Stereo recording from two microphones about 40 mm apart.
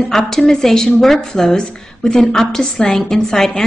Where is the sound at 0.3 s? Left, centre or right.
Centre.